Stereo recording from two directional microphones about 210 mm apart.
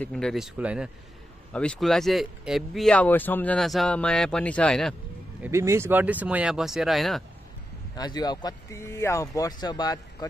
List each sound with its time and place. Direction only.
0.0 s speech: 5° left (ahead or behind)
5.4 s speech: 15° right (ahead or behind)
7.9 s speech: 20° left (ahead or behind)